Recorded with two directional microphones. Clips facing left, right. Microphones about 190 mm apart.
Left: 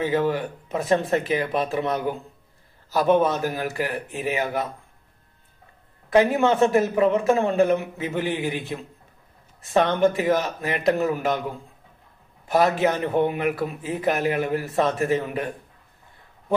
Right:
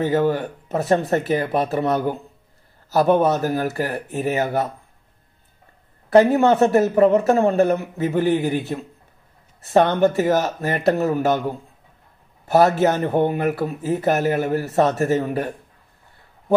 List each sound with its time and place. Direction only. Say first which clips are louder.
0.0 s speech: right 3 dB; 40° right (ahead or behind)
6.1 s speech: right 4 dB; 40° right (ahead or behind)
10.2 s speech: right 3 dB; 40° right (ahead or behind)
12.6 s speech: right 4 dB; 40° right (ahead or behind)